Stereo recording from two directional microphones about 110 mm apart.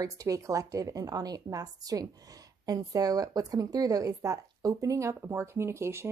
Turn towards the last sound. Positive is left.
turn(degrees=-25)  # may be behind; listen again after turning